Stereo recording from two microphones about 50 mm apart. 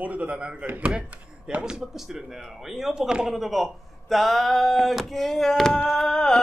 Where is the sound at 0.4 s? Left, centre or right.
Right.